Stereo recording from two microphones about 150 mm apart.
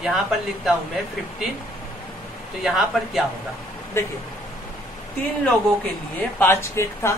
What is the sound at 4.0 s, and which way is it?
Speech, 15° left (ahead or behind).